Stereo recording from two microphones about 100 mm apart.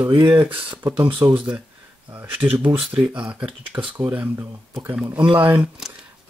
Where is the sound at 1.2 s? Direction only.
25° right (ahead or behind).